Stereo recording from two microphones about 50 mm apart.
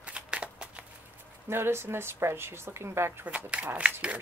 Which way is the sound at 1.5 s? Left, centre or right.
Right.